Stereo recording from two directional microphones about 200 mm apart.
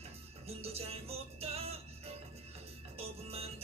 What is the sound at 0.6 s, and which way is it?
Music, 30° right (ahead or behind).